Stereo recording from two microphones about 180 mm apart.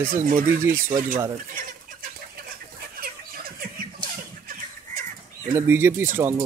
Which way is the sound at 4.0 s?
50° right (ahead or behind).